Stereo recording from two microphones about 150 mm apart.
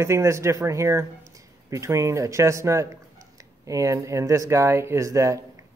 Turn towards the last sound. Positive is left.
turn(degrees=-20)  # may be behind; listen again after turning